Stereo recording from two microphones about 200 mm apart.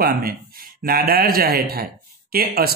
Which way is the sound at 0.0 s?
45° right (ahead or behind).